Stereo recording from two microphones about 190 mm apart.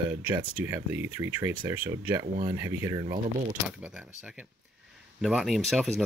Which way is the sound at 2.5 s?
15° right (ahead or behind).